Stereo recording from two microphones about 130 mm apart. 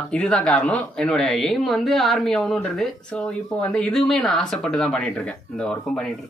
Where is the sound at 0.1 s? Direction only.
5° left (ahead or behind).